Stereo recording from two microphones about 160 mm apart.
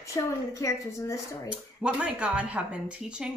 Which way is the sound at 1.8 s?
5° right (ahead or behind).